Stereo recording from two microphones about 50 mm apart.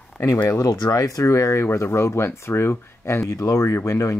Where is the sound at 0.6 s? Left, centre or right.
Left.